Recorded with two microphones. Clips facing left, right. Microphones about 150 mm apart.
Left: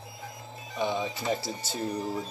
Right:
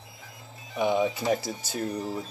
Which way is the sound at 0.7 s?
15° right (ahead or behind).